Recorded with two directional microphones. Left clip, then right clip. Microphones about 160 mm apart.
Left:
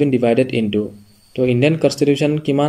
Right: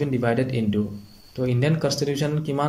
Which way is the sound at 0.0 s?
15° left (ahead or behind).